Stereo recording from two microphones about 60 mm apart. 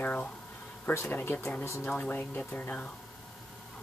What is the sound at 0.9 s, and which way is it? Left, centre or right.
Speech, left.